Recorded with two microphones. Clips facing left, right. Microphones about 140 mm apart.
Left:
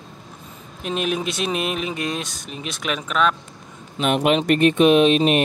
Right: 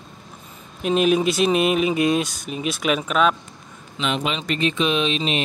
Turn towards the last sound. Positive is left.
turn(degrees=55)  # may be behind; listen again after turning